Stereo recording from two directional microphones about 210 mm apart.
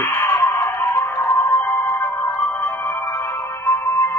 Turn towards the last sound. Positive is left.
turn(degrees=10)  # may be behind; listen again after turning